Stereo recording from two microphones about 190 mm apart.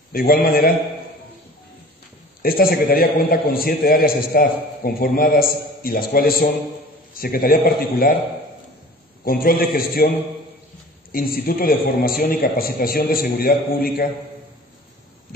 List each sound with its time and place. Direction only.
0.1 s a man's voice: 50° left (ahead or behind)
2.4 s a man's voice: 50° left (ahead or behind)
9.2 s a man's voice: 50° left (ahead or behind)